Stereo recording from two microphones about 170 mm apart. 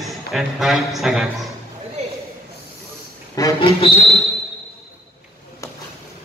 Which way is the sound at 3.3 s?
20° left (ahead or behind).